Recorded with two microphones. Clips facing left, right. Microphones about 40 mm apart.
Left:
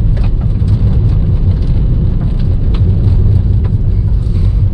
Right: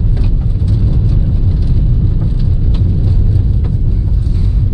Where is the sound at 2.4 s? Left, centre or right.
Left.